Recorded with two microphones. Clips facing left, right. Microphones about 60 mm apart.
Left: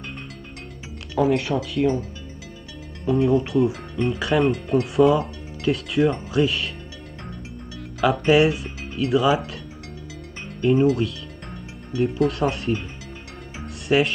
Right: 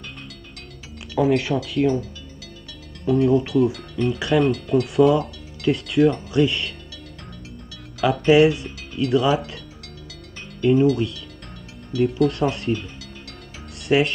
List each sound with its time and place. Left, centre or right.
1.1 s speech: centre
3.1 s speech: centre
8.3 s speech: centre
10.6 s speech: centre
13.8 s speech: centre